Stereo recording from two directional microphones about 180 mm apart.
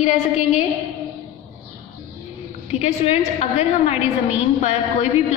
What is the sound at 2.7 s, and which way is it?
A woman's voice, 35° left (ahead or behind).